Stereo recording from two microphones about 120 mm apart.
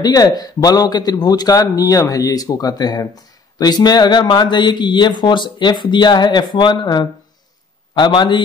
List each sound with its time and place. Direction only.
0.0 s speech: 30° left (ahead or behind)